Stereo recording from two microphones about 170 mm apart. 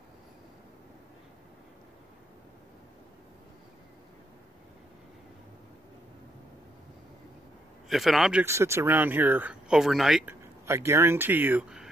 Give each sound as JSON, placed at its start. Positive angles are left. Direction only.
{"t": 7.9, "sound": "speech", "side_deg": 0}
{"t": 8.5, "sound": "speech", "side_deg": -15}
{"t": 10.7, "sound": "speech", "side_deg": -15}